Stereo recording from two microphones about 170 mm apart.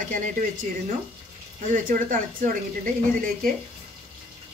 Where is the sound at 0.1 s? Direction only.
50° right (ahead or behind).